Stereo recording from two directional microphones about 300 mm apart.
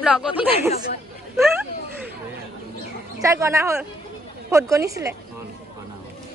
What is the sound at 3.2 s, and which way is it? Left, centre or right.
Speech, centre.